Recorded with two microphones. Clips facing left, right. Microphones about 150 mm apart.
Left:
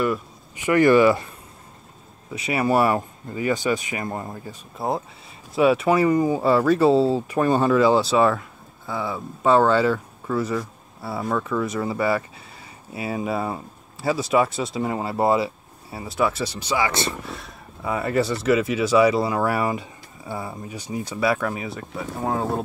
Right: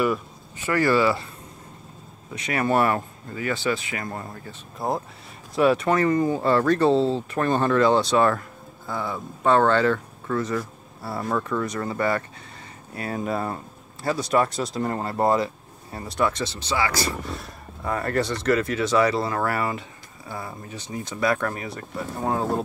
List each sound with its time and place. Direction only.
0.6 s speech: 20° left (ahead or behind)
2.3 s speech: 10° left (ahead or behind)
4.7 s speech: centre (ahead or behind); by 17.1 s 20° left (ahead or behind)
17.3 s speech: 5° left (ahead or behind)